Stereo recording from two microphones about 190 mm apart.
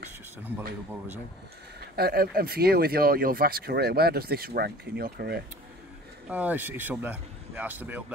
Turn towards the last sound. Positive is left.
turn(degrees=-10)  # may be behind; listen again after turning